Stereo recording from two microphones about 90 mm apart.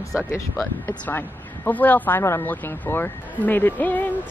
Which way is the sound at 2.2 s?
30° left (ahead or behind).